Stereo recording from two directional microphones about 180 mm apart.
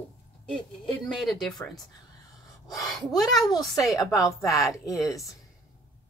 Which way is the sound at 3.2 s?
Centre (ahead or behind).